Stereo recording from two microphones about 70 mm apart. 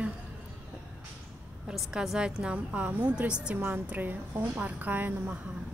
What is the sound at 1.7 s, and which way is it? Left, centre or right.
A woman's voice, centre.